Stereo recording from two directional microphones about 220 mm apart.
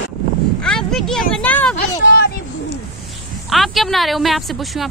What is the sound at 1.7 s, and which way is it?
Speech, 50° left (ahead or behind).